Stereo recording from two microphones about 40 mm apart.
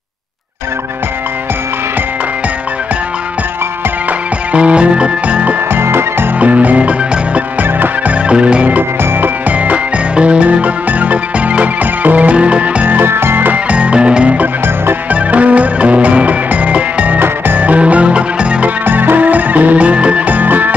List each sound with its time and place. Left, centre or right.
4.5 s music: right
5.7 s music: right
6.4 s music: right
10.1 s music: right
13.0 s music: right
13.7 s music: right
15.0 s music: right
18.9 s music: right
20.2 s music: right